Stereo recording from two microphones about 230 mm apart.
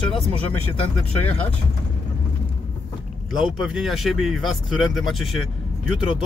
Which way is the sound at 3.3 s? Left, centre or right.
Centre.